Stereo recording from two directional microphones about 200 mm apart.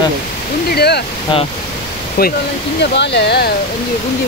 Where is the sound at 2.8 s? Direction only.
60° left (ahead or behind).